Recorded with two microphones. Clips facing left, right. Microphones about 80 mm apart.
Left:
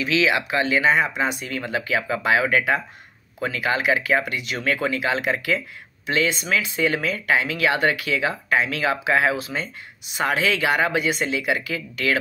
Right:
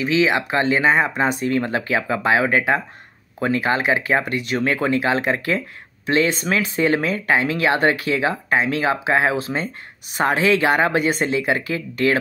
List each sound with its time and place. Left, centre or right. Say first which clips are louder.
0.0 s speech: right 3 dB; right